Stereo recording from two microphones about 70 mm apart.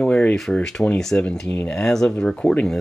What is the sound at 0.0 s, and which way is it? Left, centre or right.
Speech, centre.